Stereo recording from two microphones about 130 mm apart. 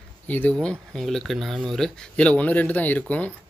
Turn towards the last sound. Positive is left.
turn(degrees=10)  # may be behind; listen again after turning